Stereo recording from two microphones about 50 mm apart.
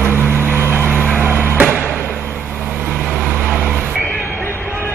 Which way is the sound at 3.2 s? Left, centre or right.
Right.